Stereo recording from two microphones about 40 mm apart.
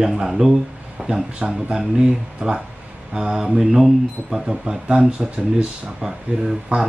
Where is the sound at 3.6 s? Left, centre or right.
Centre; by 5.7 s right.